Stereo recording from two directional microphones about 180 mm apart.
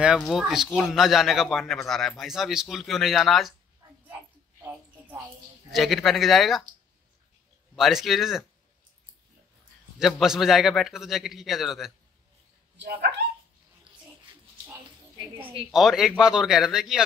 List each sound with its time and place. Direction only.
0.3 s a man's voice: centre (ahead or behind)
4.6 s a sound: 10° right (ahead or behind)
5.7 s a man's voice: centre (ahead or behind)
7.7 s a man's voice: centre (ahead or behind)
9.9 s a man's voice: centre (ahead or behind)
12.7 s speech: 70° right (ahead or behind)
15.7 s a man's voice: centre (ahead or behind)